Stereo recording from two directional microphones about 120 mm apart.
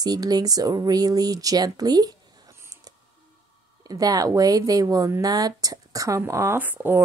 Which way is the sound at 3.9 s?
30° right (ahead or behind).